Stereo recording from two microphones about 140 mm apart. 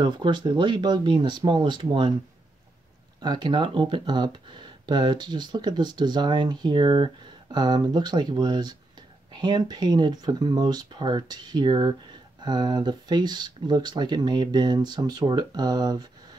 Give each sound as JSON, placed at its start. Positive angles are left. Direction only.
{"t": 0.0, "sound": "speech", "side_deg": -35}
{"t": 3.2, "sound": "speech", "side_deg": -30}